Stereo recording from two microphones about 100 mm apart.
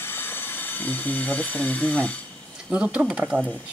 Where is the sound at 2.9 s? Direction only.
10° right (ahead or behind).